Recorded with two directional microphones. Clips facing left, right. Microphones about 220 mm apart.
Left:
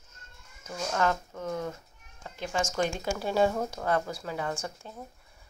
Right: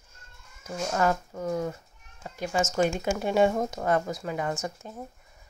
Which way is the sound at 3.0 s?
20° right (ahead or behind).